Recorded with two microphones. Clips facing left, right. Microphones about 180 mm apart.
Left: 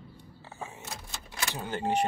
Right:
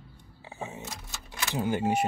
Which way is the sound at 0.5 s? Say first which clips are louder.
Right 4 dB; 20° right (ahead or behind).